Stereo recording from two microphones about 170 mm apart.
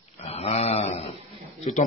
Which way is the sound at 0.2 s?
35° left (ahead or behind).